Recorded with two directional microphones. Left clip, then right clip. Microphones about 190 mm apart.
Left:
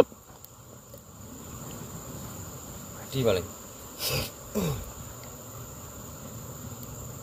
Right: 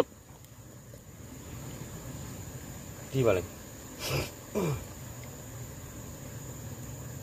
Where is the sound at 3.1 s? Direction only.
55° left (ahead or behind).